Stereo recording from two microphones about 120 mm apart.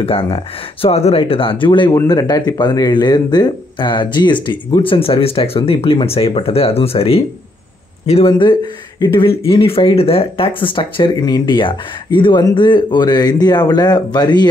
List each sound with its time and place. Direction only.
0.0 s speech: 50° left (ahead or behind)
2.0 s speech: 30° left (ahead or behind); by 7.2 s 55° left (ahead or behind)
9.0 s speech: 45° left (ahead or behind)